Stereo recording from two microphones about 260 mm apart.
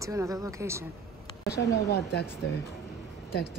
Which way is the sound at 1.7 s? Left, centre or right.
Left.